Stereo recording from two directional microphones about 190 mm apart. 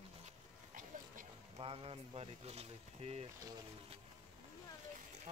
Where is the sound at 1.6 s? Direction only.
30° right (ahead or behind).